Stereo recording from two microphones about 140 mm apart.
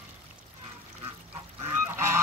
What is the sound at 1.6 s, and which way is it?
Goose, 15° right (ahead or behind).